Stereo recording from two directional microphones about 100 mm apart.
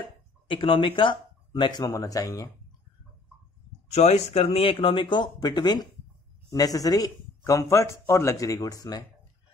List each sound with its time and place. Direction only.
0.5 s speech: 60° left (ahead or behind)
2.0 s a man's voice: 35° left (ahead or behind)
3.9 s a man's voice: 90° left; by 8.7 s 35° left (ahead or behind)